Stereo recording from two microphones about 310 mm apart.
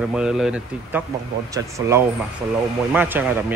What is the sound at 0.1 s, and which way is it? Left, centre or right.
Speech, centre.